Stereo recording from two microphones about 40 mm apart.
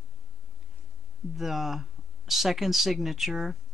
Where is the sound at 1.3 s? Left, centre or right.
Centre.